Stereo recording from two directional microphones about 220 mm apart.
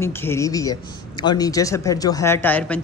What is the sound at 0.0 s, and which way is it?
Speech, 10° left (ahead or behind).